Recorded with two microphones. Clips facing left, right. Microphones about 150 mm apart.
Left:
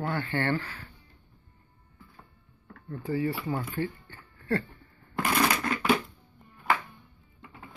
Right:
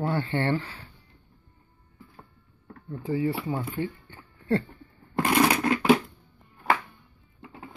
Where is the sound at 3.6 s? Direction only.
20° right (ahead or behind).